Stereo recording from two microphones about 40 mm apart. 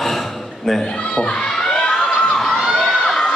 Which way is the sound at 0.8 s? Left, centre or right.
Left.